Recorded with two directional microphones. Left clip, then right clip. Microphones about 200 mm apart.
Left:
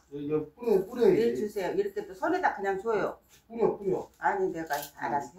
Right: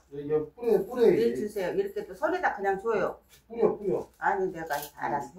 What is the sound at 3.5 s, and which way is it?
Speech, 15° right (ahead or behind).